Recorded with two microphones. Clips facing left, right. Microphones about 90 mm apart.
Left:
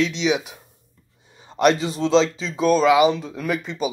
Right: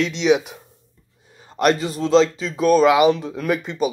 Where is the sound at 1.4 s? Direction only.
Centre (ahead or behind).